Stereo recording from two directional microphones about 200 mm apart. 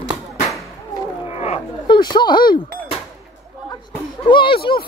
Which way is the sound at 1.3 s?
30° left (ahead or behind).